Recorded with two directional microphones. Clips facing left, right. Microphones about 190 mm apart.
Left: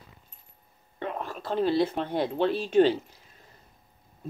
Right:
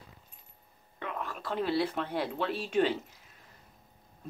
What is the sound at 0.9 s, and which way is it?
Speech, 35° left (ahead or behind).